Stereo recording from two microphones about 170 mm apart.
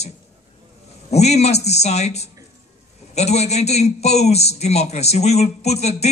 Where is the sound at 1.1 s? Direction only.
40° left (ahead or behind).